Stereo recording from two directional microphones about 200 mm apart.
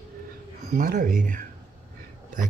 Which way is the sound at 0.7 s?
45° right (ahead or behind).